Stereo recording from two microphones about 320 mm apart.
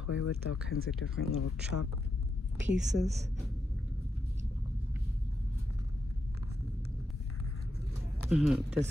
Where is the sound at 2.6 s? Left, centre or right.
Right.